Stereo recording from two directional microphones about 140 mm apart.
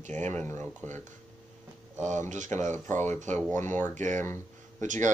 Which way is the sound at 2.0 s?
60° right (ahead or behind).